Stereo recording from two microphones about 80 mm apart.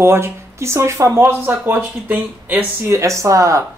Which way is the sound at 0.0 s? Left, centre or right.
Right.